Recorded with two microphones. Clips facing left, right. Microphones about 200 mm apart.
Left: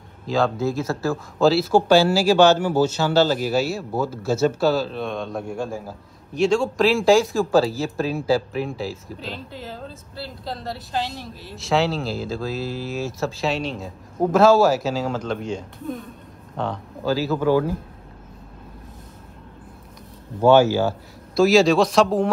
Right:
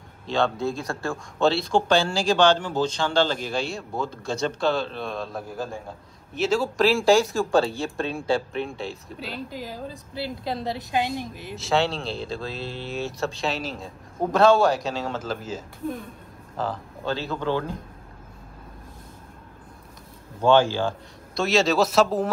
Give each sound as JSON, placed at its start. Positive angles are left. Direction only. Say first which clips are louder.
{"t": 0.3, "sound": "a woman's voice", "louder": "left 3 dB", "side_deg": 0}
{"t": 11.5, "sound": "speech", "louder": "left 2 dB", "side_deg": 0}
{"t": 20.4, "sound": "speech", "louder": "left 4 dB", "side_deg": 10}